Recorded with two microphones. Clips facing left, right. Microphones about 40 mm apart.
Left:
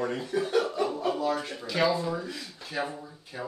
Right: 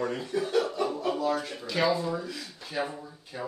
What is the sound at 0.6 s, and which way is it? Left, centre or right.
Chuckle, left.